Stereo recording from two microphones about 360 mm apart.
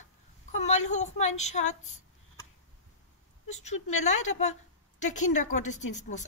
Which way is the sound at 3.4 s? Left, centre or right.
Centre.